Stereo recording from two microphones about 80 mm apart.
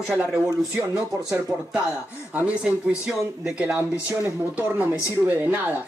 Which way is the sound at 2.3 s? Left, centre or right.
Centre.